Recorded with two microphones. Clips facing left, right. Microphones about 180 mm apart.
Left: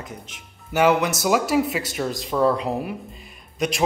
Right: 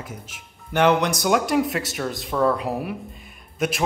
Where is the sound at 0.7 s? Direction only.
5° left (ahead or behind).